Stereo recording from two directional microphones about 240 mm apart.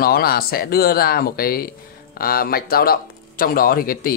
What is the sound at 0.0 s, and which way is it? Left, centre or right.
Speech, left.